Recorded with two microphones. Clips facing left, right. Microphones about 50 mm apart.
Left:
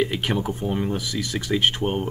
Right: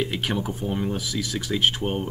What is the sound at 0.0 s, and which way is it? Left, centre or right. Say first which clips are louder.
Speech: left 3 dB; centre.